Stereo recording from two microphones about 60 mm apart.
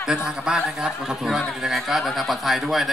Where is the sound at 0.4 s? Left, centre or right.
Centre.